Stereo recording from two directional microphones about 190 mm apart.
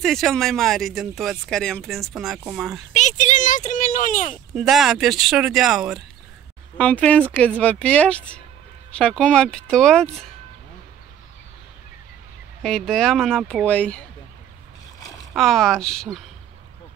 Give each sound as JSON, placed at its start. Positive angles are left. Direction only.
{"t": 0.0, "sound": "speech", "side_deg": 0}
{"t": 2.9, "sound": "speech", "side_deg": 40}
{"t": 4.6, "sound": "speech", "side_deg": 0}
{"t": 12.6, "sound": "speech", "side_deg": 5}
{"t": 15.3, "sound": "speech", "side_deg": 0}